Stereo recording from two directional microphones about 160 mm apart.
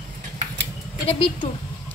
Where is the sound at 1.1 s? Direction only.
35° left (ahead or behind).